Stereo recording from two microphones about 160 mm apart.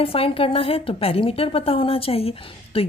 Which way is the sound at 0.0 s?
35° left (ahead or behind).